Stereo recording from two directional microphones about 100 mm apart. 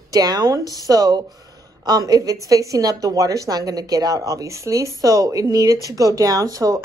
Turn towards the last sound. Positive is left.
turn(degrees=-35)  # may be behind; listen again after turning